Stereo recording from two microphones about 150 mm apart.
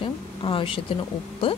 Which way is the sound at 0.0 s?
35° left (ahead or behind).